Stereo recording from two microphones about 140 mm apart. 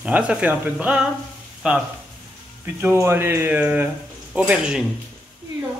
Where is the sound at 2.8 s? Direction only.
15° right (ahead or behind).